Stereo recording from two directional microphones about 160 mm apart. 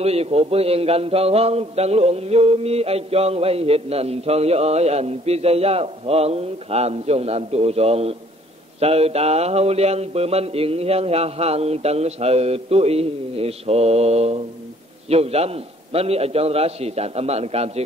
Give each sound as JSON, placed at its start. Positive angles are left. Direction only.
{"t": 0.0, "sound": "a man's voice", "side_deg": -40}